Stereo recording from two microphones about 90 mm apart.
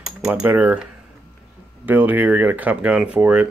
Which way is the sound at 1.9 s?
20° right (ahead or behind).